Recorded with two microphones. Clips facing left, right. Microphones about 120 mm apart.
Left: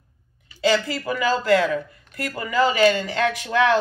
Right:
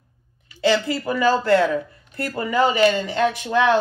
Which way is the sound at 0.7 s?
25° right (ahead or behind).